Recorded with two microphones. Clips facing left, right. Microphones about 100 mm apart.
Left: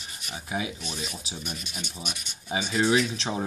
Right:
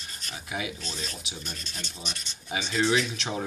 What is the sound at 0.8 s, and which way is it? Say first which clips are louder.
Rub: left 2 dB; 15° left (ahead or behind).